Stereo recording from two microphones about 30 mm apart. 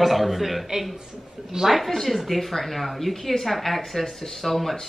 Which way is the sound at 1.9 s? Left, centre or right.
Centre.